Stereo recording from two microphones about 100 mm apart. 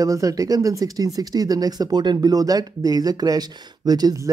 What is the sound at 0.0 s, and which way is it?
Speech, 35° right (ahead or behind).